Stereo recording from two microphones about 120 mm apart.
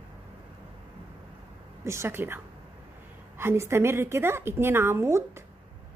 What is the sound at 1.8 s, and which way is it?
A woman's voice, 20° right (ahead or behind).